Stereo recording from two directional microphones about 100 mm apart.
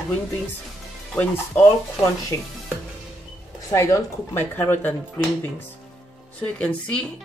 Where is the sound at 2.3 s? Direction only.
30° left (ahead or behind).